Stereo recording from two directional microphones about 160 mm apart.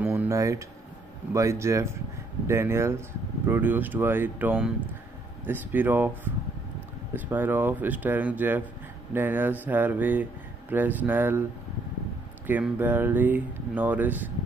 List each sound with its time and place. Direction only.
0.0 s a sound: 15° right (ahead or behind)
1.3 s speech: 20° right (ahead or behind)
7.2 s speech: 10° right (ahead or behind)
12.4 s speech: 10° right (ahead or behind)